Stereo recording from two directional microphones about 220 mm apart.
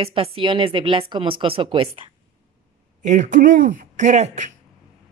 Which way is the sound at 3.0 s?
35° right (ahead or behind).